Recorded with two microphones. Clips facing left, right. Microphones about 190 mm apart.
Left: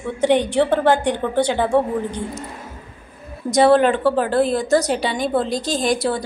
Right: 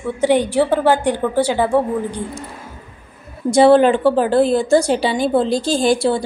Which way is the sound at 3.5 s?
30° right (ahead or behind).